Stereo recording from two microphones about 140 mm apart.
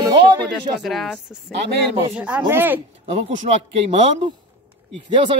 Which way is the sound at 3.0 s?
45° right (ahead or behind).